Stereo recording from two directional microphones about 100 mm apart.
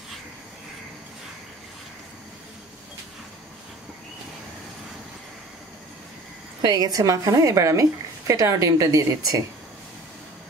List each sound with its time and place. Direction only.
6.6 s a woman's voice: 45° right (ahead or behind)